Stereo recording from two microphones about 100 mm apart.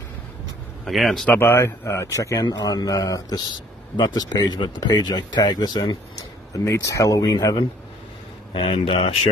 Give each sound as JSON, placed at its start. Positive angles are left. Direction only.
{"t": 0.8, "sound": "speech", "side_deg": 0}
{"t": 1.4, "sound": "speech", "side_deg": 25}
{"t": 6.5, "sound": "speech", "side_deg": 30}
{"t": 8.5, "sound": "speech", "side_deg": 65}